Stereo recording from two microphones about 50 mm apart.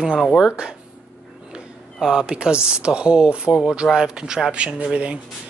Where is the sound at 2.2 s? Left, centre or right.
Centre.